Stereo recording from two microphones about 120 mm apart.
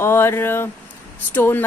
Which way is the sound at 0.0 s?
20° left (ahead or behind).